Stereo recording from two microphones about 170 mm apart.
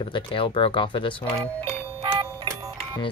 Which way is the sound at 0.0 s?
30° left (ahead or behind).